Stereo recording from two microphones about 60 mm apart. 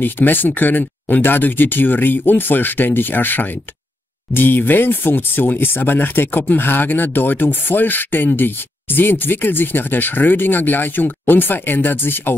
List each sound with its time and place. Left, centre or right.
0.0 s speech: left